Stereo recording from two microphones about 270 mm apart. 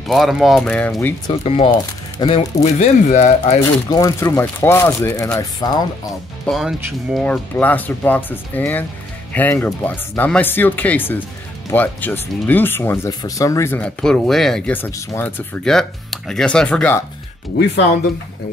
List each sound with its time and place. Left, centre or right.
0.1 s speech: centre
1.3 s speech: left
3.6 s speech: centre
6.4 s speech: centre